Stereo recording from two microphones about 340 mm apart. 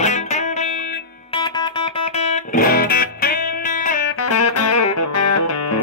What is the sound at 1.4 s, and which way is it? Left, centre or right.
Music, centre.